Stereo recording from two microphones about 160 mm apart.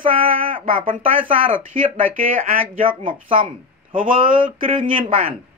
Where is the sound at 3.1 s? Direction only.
30° right (ahead or behind).